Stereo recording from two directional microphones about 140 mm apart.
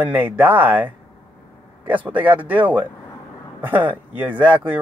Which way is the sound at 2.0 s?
10° right (ahead or behind).